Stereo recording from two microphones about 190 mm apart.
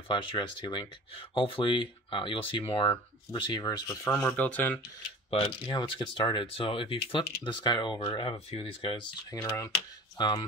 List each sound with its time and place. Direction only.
0.1 s speech: 25° left (ahead or behind)
4.0 s speech: 5° left (ahead or behind)
5.3 s speech: 25° left (ahead or behind)
9.3 s speech: 20° left (ahead or behind)